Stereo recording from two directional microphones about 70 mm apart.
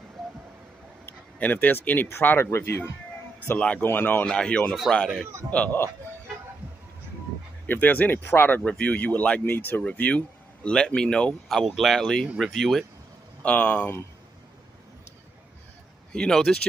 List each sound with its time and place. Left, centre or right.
1.0 s speech: left
3.4 s speech: centre
4.3 s speech: centre
7.6 s speech: left
11.4 s speech: centre
13.4 s speech: left
16.1 s speech: centre